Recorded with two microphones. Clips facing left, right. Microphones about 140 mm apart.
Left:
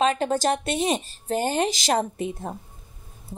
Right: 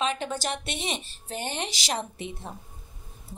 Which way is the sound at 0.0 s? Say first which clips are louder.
Left 7 dB; 45° left (ahead or behind).